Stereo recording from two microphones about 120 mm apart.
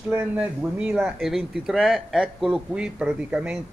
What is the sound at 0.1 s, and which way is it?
Speech, 10° right (ahead or behind).